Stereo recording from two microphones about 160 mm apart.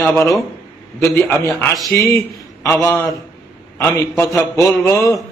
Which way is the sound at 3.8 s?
10° left (ahead or behind).